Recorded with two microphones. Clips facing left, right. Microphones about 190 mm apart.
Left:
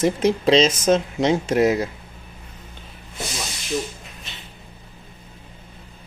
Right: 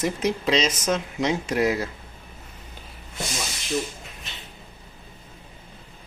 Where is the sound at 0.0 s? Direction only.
30° left (ahead or behind).